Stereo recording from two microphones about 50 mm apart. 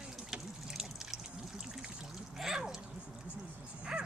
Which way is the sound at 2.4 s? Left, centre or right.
Centre.